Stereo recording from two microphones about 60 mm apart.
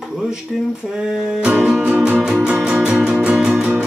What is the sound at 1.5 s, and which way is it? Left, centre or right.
Music, right.